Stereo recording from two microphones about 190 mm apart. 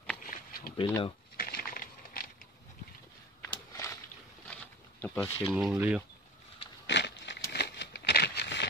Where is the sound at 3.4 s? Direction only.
15° left (ahead or behind).